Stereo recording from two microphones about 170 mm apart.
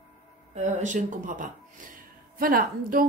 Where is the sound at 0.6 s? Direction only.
45° right (ahead or behind).